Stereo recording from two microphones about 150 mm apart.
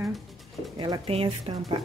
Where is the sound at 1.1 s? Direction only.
40° right (ahead or behind).